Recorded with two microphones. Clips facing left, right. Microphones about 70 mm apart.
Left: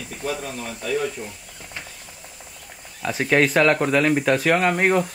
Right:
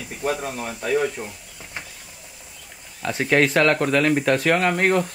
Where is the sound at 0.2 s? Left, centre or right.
Right.